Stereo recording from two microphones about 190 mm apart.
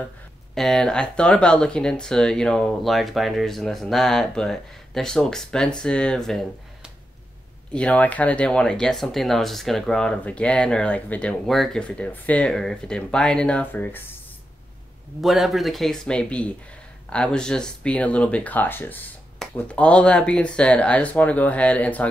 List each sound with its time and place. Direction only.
0.6 s speech: centre (ahead or behind)
15.2 s speech: centre (ahead or behind)